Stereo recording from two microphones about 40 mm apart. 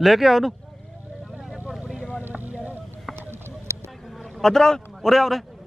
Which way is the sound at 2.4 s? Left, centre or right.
Right.